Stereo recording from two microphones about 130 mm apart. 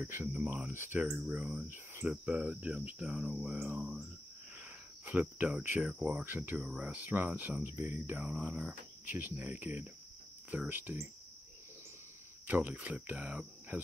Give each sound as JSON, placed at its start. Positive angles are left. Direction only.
{"t": 0.0, "sound": "speech", "side_deg": -20}
{"t": 4.6, "sound": "cricket", "side_deg": -10}
{"t": 5.8, "sound": "speech", "side_deg": -10}
{"t": 12.4, "sound": "speech", "side_deg": -10}